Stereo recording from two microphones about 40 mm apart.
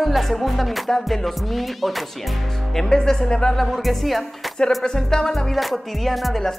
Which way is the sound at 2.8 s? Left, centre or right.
Centre.